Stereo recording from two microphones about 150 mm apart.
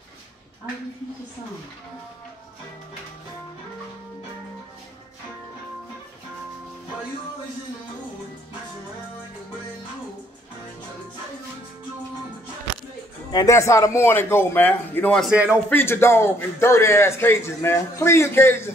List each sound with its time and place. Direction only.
13.3 s a man's voice: 25° left (ahead or behind); by 15.3 s 5° left (ahead or behind)
15.3 s a man's voice: 10° right (ahead or behind)
15.7 s a man's voice: 15° left (ahead or behind)